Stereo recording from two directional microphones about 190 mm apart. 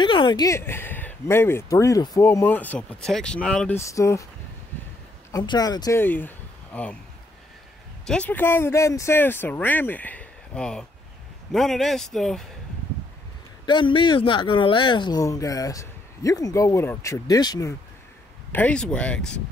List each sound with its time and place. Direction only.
0.0 s speech: 25° left (ahead or behind)
5.3 s speech: 20° left (ahead or behind)
8.1 s a man's voice: 10° left (ahead or behind)
13.7 s speech: 25° left (ahead or behind)
18.5 s a man's voice: 5° left (ahead or behind)